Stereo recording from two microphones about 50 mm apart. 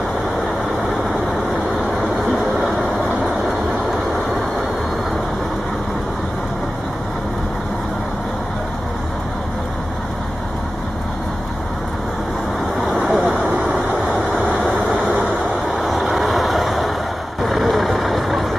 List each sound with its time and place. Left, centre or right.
3.0 s vehicle: right
12.9 s vehicle: right
14.3 s vehicle: right
15.8 s vehicle: centre